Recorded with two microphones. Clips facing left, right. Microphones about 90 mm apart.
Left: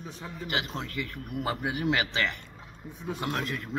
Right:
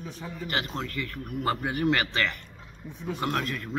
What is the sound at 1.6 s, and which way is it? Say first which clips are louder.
Speech: right 2 dB; 10° left (ahead or behind).